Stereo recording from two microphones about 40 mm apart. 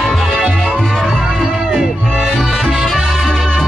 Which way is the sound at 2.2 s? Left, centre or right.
Centre.